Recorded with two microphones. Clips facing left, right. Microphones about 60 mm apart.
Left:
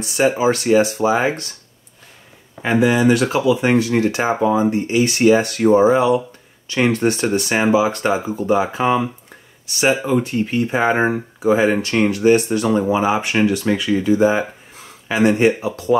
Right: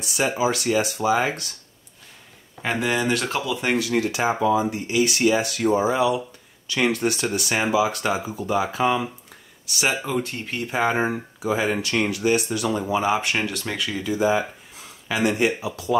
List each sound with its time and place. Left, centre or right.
0.0 s speech: left
2.6 s speech: centre
3.7 s speech: left
10.1 s speech: centre
11.1 s speech: left
12.9 s speech: left